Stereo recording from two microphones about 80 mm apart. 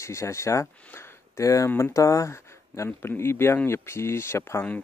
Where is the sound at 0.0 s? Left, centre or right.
Left.